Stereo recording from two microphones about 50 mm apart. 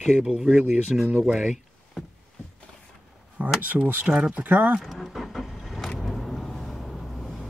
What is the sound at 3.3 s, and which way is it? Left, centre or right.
Speech, right.